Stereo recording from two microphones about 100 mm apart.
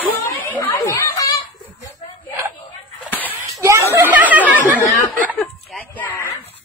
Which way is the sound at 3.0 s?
15° left (ahead or behind).